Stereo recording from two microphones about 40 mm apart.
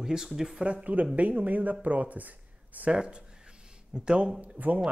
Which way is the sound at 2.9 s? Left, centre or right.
Right.